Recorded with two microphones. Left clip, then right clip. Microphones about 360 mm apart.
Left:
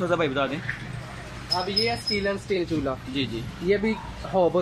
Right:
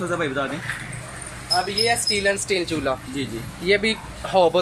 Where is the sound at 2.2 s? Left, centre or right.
Right.